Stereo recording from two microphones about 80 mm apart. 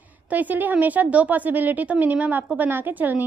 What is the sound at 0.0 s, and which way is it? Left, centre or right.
A woman's voice, centre.